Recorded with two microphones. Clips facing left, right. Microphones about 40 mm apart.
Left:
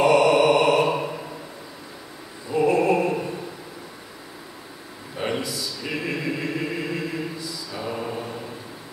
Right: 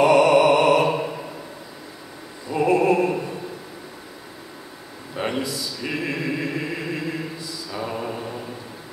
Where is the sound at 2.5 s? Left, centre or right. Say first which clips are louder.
Right 1 dB; centre.